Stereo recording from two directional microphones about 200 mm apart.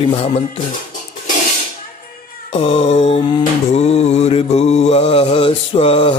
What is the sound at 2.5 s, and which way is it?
Mantra, 30° left (ahead or behind).